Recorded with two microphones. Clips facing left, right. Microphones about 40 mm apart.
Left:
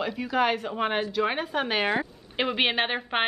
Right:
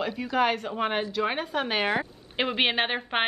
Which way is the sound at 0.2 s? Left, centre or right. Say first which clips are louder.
Even; centre.